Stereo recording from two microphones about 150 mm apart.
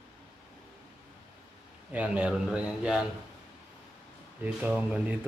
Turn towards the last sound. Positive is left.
turn(degrees=-5)  # may be behind; listen again after turning